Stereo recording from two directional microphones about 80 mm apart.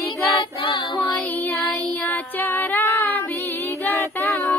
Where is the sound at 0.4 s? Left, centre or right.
Left.